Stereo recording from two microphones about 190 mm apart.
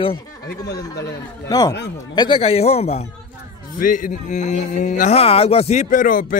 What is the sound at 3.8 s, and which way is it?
Speech, 45° left (ahead or behind).